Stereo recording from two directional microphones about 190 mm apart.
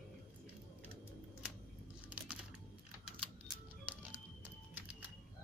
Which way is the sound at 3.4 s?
10° right (ahead or behind).